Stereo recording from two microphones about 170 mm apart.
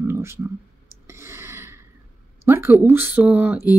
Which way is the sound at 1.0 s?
15° right (ahead or behind).